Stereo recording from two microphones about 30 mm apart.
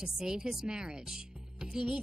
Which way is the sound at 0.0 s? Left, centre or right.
Right.